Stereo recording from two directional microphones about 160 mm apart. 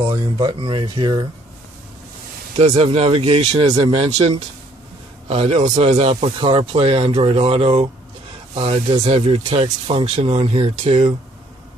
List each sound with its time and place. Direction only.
0.1 s speech: 25° right (ahead or behind)
2.5 s speech: 40° right (ahead or behind)
5.3 s speech: 40° right (ahead or behind)